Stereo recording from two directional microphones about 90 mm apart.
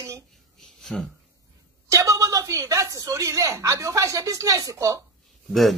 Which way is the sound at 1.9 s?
40° right (ahead or behind).